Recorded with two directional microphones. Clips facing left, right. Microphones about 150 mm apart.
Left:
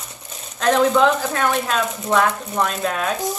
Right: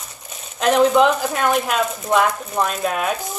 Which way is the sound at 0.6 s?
15° right (ahead or behind).